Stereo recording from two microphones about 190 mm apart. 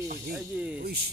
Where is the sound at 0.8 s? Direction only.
55° right (ahead or behind).